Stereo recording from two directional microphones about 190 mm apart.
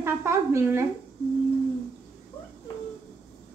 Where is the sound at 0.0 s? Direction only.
15° right (ahead or behind).